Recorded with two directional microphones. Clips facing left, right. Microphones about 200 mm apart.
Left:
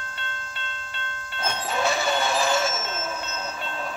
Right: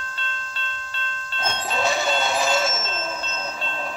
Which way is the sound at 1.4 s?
15° right (ahead or behind).